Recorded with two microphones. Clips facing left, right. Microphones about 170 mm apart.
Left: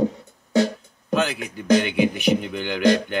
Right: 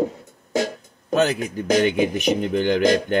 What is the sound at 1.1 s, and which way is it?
Speech, 40° right (ahead or behind).